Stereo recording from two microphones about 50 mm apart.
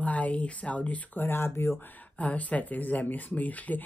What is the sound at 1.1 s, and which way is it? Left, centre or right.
Speech, left.